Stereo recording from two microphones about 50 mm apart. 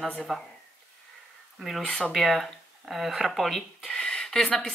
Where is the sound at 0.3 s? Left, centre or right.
Centre.